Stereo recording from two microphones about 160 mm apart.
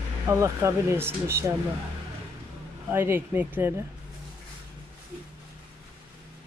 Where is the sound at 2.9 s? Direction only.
15° right (ahead or behind).